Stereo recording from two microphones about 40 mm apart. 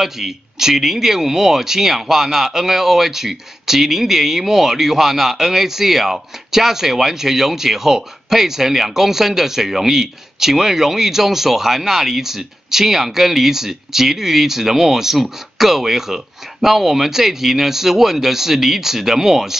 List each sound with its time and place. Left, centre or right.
0.0 s speech: centre